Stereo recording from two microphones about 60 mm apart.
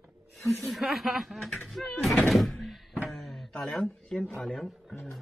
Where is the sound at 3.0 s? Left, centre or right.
Centre.